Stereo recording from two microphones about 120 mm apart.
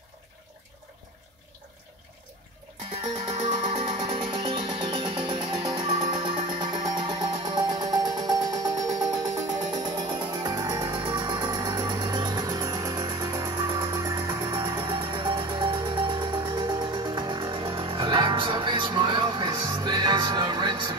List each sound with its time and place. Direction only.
3.3 s music: 45° right (ahead or behind)